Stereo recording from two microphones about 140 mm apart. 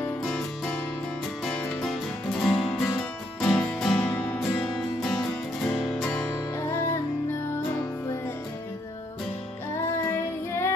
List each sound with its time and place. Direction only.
0.2 s music: 5° left (ahead or behind)
1.8 s music: centre (ahead or behind)
10.0 s child singing: 20° left (ahead or behind)